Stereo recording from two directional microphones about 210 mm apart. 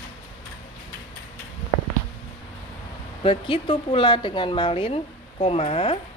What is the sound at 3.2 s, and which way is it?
Speech, 25° left (ahead or behind).